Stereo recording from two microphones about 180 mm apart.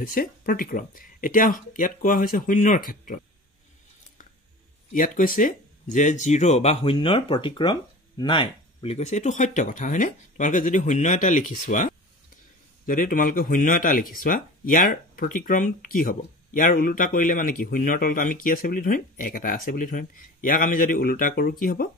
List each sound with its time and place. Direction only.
0.0 s speech: 50° left (ahead or behind)
4.9 s speech: 50° left (ahead or behind)